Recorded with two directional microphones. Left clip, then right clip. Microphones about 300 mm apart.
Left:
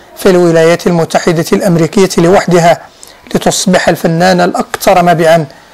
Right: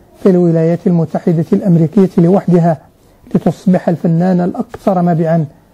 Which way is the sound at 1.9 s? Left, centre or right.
Left.